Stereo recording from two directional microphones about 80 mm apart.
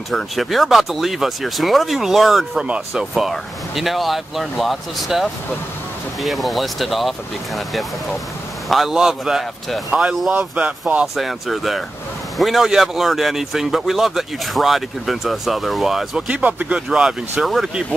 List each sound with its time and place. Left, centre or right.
0.1 s speech: centre
11.1 s speech: centre
16.3 s speech: centre